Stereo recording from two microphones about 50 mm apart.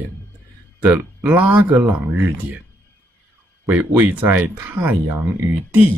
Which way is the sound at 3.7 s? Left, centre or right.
Right.